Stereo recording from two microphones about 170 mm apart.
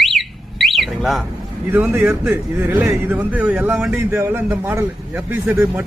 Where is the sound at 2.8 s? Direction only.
10° right (ahead or behind).